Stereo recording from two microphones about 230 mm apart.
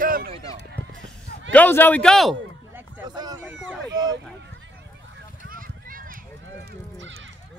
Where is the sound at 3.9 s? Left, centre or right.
Centre.